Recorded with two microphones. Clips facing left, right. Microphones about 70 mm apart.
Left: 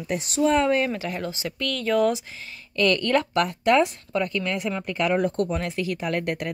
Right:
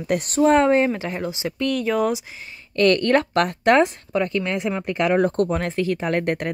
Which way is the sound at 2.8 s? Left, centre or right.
Right.